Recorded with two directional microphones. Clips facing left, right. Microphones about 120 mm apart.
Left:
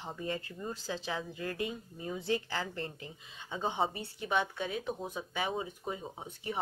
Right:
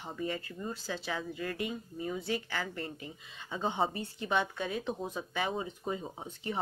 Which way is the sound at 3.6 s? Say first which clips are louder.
Right 1 dB; 10° left (ahead or behind).